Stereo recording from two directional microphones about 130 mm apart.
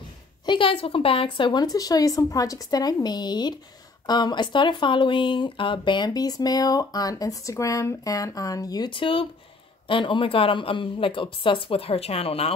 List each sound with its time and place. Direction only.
0.5 s speech: 45° left (ahead or behind)